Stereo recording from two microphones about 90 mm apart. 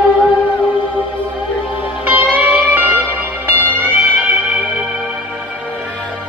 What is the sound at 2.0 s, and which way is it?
Music, 20° right (ahead or behind).